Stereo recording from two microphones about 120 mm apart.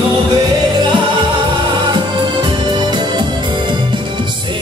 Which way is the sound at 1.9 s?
40° right (ahead or behind).